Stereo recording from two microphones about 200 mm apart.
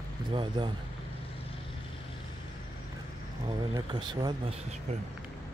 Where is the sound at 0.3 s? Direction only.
25° right (ahead or behind).